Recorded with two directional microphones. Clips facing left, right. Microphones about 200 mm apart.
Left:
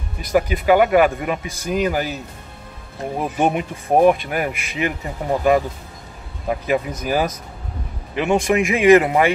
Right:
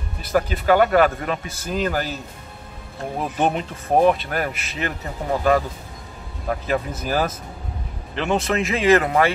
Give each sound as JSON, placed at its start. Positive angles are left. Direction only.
{"t": 0.2, "sound": "speech", "side_deg": 10}
{"t": 3.2, "sound": "speech", "side_deg": 10}